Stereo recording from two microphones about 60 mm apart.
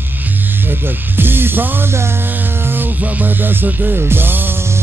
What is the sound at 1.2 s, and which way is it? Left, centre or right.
Music, right.